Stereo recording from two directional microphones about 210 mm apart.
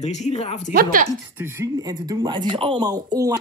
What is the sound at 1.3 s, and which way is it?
Speech, 10° right (ahead or behind).